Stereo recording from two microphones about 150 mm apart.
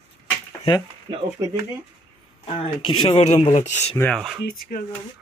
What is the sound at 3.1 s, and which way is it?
Speech, 45° left (ahead or behind).